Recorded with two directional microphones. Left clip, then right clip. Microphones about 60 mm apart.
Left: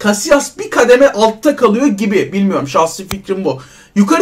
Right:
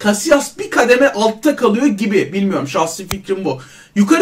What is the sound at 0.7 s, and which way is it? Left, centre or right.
Speech, centre.